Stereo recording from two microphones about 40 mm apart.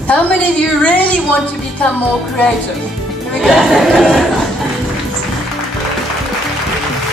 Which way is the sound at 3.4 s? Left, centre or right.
Centre.